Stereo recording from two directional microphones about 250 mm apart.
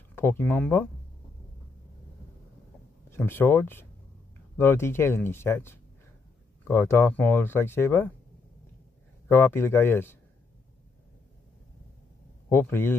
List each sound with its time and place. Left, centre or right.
0.1 s speech: centre
3.1 s speech: centre
9.3 s speech: centre
12.4 s speech: centre